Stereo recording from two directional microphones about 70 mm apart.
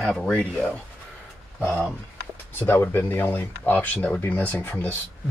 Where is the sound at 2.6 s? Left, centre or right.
Left.